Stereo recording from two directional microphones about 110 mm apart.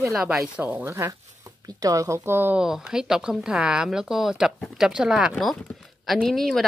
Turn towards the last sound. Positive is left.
turn(degrees=0)  # may be behind; listen again after turning